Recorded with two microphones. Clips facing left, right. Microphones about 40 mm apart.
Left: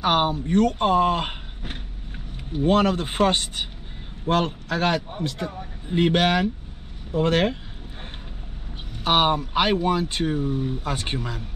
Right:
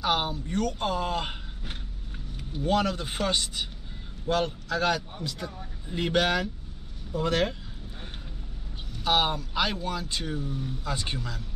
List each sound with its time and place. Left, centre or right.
0.0 s speech: left
8.9 s speech: left